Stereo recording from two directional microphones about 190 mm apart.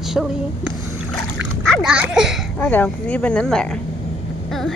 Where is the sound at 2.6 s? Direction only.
10° left (ahead or behind).